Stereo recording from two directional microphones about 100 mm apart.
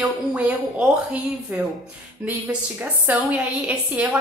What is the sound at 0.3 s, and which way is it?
A woman's voice, 15° right (ahead or behind).